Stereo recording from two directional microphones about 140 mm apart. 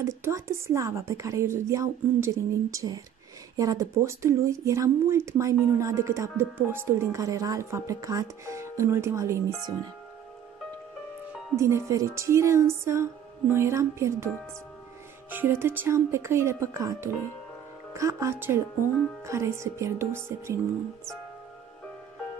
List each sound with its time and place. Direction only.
0.0 s speech: 20° right (ahead or behind)
11.5 s speech: 20° right (ahead or behind)